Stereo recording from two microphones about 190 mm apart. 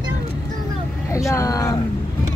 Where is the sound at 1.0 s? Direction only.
15° left (ahead or behind).